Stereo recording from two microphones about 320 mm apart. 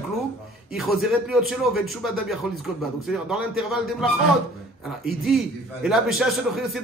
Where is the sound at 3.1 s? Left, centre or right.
Centre.